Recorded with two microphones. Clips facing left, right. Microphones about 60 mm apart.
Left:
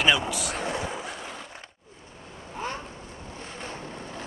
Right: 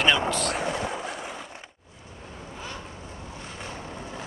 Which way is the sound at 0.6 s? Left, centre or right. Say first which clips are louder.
Right 2 dB; centre.